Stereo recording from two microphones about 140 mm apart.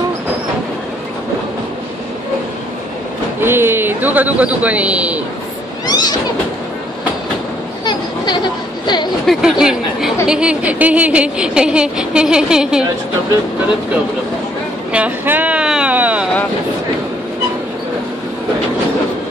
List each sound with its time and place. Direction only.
3.3 s a man's voice: 15° right (ahead or behind)
5.9 s cat: 30° left (ahead or behind)
7.8 s a sound: 30° left (ahead or behind)
9.2 s a woman's voice: centre (ahead or behind)
14.9 s speech: 10° right (ahead or behind)